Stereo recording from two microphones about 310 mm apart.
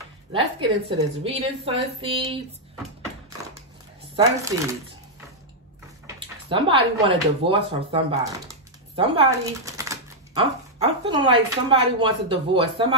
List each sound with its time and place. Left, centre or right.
0.3 s speech: centre
4.4 s speech: centre
6.1 s speech: centre
11.1 s speech: centre